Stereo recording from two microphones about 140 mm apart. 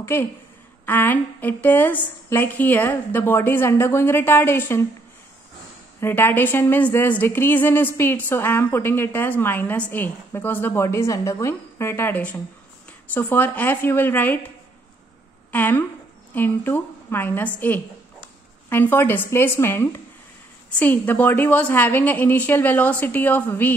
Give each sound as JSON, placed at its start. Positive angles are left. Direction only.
{"t": 0.0, "sound": "a woman's voice", "side_deg": 15}
{"t": 5.9, "sound": "a woman's voice", "side_deg": 15}
{"t": 15.5, "sound": "a woman's voice", "side_deg": 15}